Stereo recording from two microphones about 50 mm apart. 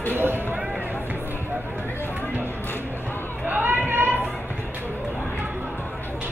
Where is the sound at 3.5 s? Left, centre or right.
Right.